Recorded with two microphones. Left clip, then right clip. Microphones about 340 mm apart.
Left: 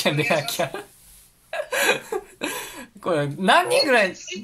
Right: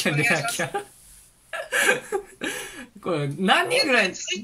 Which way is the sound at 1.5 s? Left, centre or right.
Centre.